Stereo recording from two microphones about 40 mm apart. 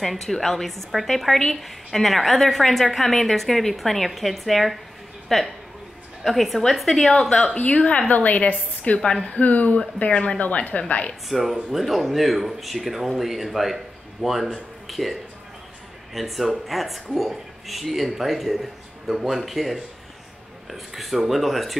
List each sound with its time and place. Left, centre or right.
0.0 s speech: centre
7.5 s a woman's voice: left
10.4 s a woman's voice: left
11.2 s speech: centre